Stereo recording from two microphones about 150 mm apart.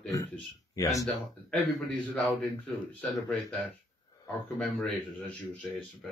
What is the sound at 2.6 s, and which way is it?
Speech, 5° left (ahead or behind).